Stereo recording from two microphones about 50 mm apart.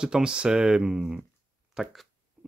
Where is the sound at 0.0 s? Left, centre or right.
Centre.